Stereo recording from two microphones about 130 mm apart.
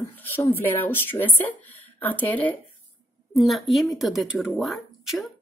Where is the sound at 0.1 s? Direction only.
15° left (ahead or behind).